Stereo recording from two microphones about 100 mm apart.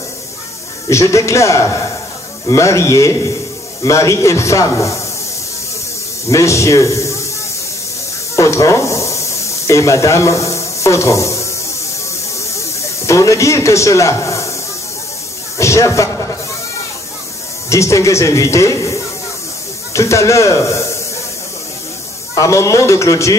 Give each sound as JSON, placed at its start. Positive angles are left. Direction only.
{"t": 0.8, "sound": "a man's voice", "side_deg": 30}
{"t": 6.2, "sound": "a man's voice", "side_deg": 30}
{"t": 8.4, "sound": "snake", "side_deg": 30}
{"t": 12.5, "sound": "snake", "side_deg": 30}
{"t": 15.5, "sound": "a sound", "side_deg": 30}
{"t": 17.6, "sound": "a man's voice", "side_deg": 30}
{"t": 22.3, "sound": "a man's voice", "side_deg": 35}